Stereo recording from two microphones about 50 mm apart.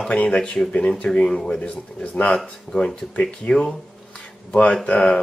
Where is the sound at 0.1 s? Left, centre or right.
Left.